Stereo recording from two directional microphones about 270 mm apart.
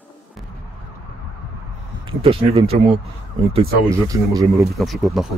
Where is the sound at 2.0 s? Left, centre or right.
Right.